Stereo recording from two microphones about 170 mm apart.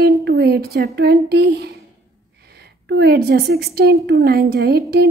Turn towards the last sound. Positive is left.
turn(degrees=-75)  # may be behind; listen again after turning